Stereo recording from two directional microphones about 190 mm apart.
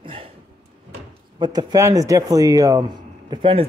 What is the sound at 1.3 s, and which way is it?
Speech, 20° right (ahead or behind).